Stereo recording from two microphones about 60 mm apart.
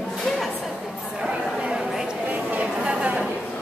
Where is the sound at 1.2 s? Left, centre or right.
Centre.